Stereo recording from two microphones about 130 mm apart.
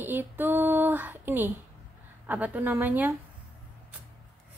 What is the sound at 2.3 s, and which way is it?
Speech, 15° right (ahead or behind).